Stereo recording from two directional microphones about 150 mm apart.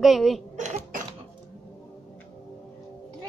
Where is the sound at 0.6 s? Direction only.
55° right (ahead or behind).